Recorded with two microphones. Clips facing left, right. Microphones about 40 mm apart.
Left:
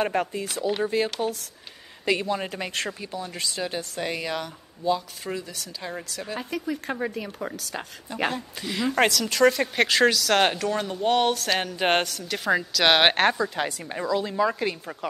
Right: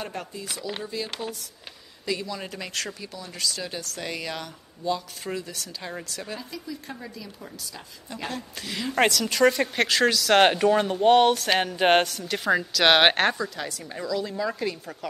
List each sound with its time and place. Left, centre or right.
0.0 s speech: left
2.0 s a man's voice: left
2.6 s a woman's voice: left; by 6.3 s centre
6.5 s speech: left
8.3 s a woman's voice: centre
10.4 s speech: centre
11.1 s a woman's voice: centre
13.6 s a woman's voice: left